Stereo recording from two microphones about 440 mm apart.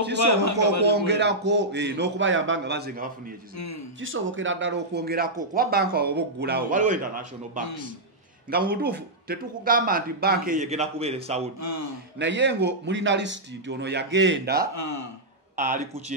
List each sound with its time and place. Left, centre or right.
0.3 s a man's voice: left
0.8 s speech: right
3.5 s a man's voice: left
4.0 s speech: right
11.6 s a man's voice: left
12.2 s speech: right
14.7 s a man's voice: left
15.5 s speech: centre